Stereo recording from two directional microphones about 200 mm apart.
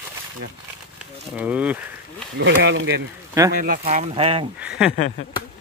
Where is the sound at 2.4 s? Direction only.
60° right (ahead or behind).